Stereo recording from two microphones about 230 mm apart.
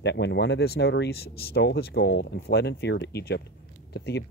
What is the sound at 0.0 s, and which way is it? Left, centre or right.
Speech, left.